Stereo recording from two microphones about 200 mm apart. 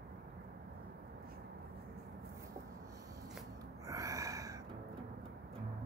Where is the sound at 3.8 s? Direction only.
15° right (ahead or behind).